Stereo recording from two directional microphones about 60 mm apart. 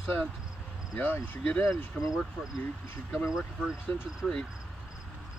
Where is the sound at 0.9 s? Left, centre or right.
Left.